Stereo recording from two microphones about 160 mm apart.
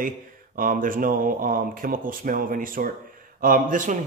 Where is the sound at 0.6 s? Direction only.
60° right (ahead or behind).